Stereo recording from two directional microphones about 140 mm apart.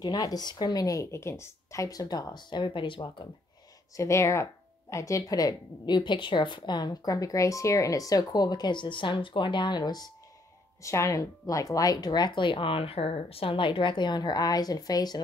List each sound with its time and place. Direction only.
0.0 s speech: 30° left (ahead or behind)
3.9 s speech: 20° left (ahead or behind)